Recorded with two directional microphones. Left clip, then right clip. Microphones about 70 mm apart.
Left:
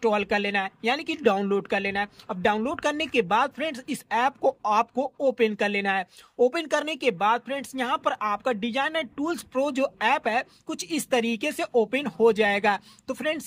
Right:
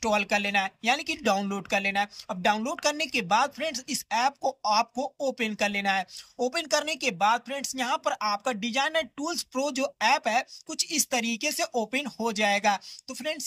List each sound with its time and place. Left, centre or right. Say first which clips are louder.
0.0 s speech: left 2 dB; left
2.6 s speech: left 1 dB; left
5.3 s speech: left 4 dB; left
9.4 s speech: left 3 dB; left
10.7 s speech: left 2 dB; left
11.5 s speech: left 4 dB; left